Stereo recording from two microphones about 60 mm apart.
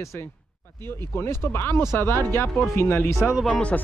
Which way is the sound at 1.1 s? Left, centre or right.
Left.